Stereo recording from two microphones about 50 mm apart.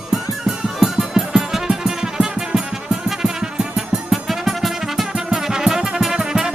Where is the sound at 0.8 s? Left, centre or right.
Centre.